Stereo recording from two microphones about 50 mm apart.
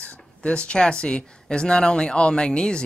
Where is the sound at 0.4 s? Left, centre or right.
Left.